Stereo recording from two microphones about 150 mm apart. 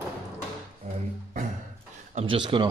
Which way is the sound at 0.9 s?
50° right (ahead or behind).